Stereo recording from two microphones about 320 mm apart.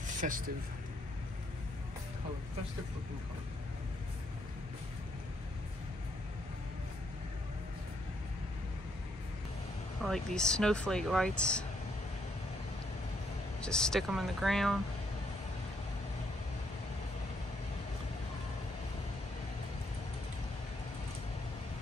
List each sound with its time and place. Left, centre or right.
0.0 s a sound: right
10.0 s speech: centre
13.6 s speech: centre